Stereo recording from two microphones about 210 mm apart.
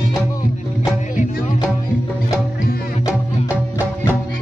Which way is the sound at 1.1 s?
35° left (ahead or behind).